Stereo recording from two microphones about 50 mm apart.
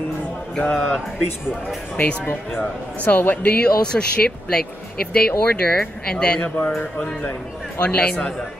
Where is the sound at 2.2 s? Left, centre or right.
Left.